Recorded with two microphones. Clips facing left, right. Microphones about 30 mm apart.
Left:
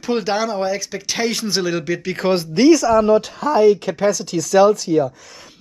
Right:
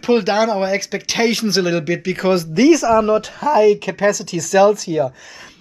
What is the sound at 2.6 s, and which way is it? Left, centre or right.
Speech, right.